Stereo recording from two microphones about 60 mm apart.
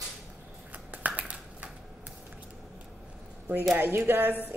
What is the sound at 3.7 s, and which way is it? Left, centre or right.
Speech, right.